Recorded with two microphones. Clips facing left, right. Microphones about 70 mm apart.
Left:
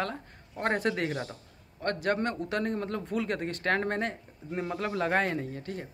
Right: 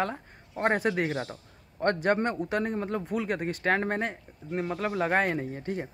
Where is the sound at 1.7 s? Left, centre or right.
Right.